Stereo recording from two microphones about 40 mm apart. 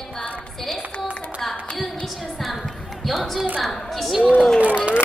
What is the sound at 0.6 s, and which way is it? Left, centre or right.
Speech, centre.